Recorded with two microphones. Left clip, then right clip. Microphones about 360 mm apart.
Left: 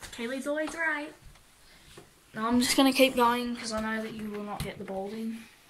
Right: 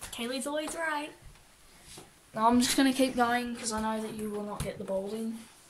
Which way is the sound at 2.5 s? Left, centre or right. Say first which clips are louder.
Left 1 dB; centre.